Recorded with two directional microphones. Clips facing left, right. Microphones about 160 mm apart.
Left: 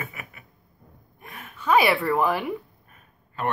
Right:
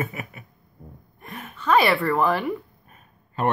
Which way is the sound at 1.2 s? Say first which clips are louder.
Right 4 dB; 10° left (ahead or behind).